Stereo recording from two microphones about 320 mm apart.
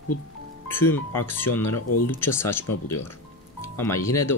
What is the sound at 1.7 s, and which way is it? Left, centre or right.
Speech, left.